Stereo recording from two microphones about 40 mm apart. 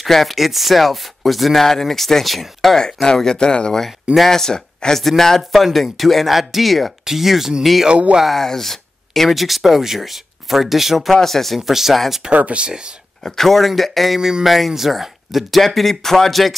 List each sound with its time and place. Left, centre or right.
0.0 s speech: centre
2.8 s speech: centre
3.8 s speech: centre
7.9 s speech: right
8.3 s speech: centre
11.1 s speech: centre
12.3 s speech: right
12.6 s speech: right
13.2 s speech: centre